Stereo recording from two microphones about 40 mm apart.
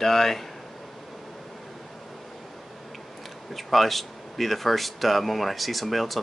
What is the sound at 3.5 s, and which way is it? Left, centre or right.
Speech, centre.